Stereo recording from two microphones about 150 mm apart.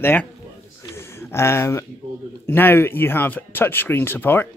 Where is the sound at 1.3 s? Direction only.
15° left (ahead or behind).